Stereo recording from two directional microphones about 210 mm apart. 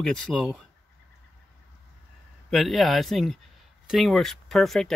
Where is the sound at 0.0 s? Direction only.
5° left (ahead or behind).